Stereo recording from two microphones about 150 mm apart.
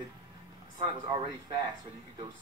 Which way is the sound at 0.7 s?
30° right (ahead or behind).